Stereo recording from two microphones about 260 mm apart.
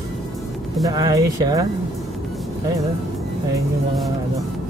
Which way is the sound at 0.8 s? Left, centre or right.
Centre.